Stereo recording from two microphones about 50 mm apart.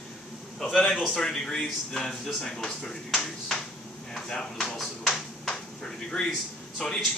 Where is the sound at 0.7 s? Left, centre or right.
Centre.